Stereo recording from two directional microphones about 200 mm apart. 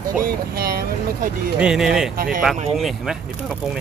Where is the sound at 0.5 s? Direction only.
50° right (ahead or behind).